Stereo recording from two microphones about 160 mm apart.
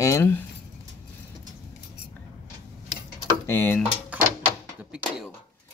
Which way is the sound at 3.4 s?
15° left (ahead or behind).